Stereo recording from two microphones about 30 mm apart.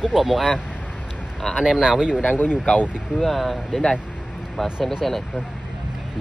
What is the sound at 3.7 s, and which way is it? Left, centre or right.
Speech, left.